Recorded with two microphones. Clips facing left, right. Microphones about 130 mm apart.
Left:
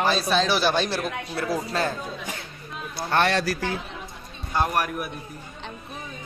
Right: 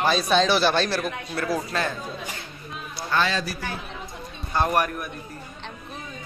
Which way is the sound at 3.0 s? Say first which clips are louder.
Left 2 dB; 60° left (ahead or behind).